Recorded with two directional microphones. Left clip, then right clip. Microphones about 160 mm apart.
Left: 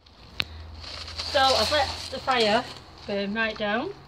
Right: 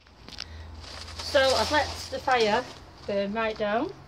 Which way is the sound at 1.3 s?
55° right (ahead or behind).